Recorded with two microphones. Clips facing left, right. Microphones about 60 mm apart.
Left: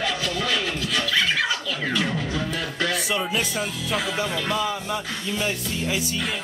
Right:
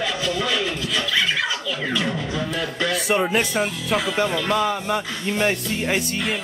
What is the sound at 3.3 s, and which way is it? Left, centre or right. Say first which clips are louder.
Speech: right 5 dB; right.